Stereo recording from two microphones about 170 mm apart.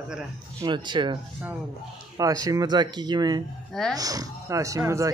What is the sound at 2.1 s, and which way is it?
Speech, 20° right (ahead or behind).